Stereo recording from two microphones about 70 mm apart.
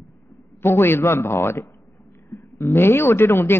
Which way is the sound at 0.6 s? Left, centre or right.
Left.